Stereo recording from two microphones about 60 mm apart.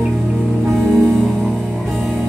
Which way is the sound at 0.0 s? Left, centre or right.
Centre.